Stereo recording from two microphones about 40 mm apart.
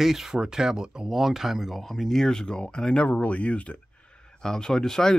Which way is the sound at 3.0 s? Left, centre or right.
Left.